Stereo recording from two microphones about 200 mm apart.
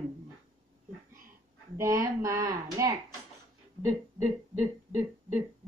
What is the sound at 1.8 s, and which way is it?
A woman's voice, 15° right (ahead or behind).